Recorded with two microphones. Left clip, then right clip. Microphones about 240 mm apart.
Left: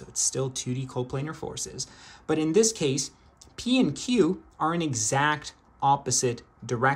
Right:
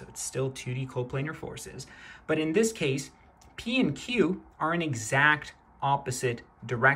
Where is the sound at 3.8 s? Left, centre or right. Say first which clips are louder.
Left 2 dB; centre.